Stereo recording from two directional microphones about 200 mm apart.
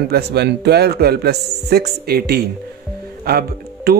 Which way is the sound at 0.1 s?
55° right (ahead or behind).